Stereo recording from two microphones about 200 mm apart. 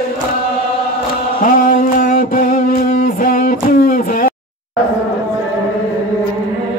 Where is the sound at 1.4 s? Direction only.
45° left (ahead or behind).